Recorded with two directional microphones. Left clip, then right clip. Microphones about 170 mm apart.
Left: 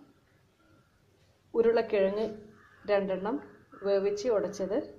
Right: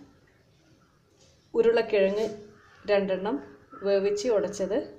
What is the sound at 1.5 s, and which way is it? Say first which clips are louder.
Speech: right 3 dB; 5° left (ahead or behind).